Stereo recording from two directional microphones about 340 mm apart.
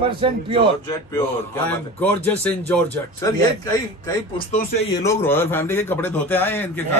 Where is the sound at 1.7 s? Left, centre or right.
Centre.